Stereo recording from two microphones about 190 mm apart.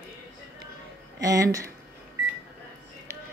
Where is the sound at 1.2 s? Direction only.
15° right (ahead or behind).